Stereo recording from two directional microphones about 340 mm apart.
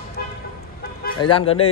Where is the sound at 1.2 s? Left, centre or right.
Centre.